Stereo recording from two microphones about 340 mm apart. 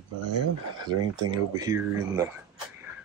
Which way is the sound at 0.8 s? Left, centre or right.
Centre.